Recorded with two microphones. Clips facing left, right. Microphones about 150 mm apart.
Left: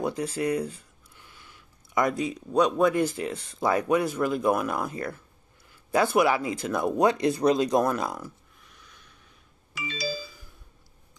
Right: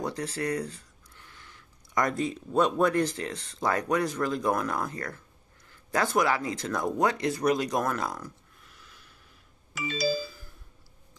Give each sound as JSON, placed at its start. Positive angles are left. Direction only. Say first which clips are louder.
{"t": 0.0, "sound": "a sound", "louder": "left 4 dB", "side_deg": 15}
{"t": 2.9, "sound": "speech", "louder": "left 2 dB", "side_deg": 10}
{"t": 6.1, "sound": "speech", "louder": "left 3 dB", "side_deg": 15}
{"t": 8.6, "sound": "snort", "louder": "left 1 dB", "side_deg": -5}
{"t": 9.8, "sound": "music", "louder": "right 4 dB", "side_deg": -50}
{"t": 10.2, "sound": "a sound", "louder": "right 4 dB", "side_deg": 0}